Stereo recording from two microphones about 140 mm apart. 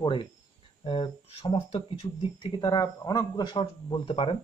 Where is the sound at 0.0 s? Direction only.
35° left (ahead or behind).